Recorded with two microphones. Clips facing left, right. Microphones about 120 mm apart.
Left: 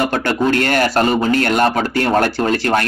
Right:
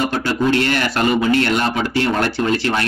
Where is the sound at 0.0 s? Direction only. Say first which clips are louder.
Left 2 dB; 55° left (ahead or behind).